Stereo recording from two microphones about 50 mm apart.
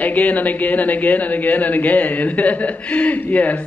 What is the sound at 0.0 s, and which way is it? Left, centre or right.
Speech, left.